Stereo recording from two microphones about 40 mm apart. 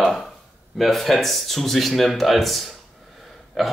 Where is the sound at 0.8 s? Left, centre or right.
Centre.